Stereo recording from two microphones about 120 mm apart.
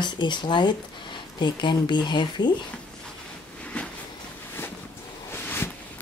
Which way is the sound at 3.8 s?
10° left (ahead or behind).